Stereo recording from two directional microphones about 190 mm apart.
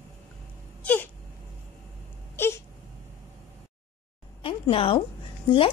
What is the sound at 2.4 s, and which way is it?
Wail, 10° left (ahead or behind).